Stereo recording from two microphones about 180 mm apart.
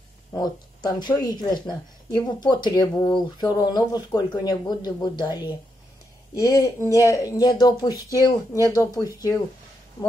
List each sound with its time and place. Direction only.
0.3 s speech: 20° left (ahead or behind)